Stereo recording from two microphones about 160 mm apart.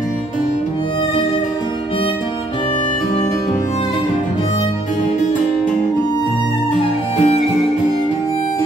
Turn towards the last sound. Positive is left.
turn(degrees=45)  # may be behind; listen again after turning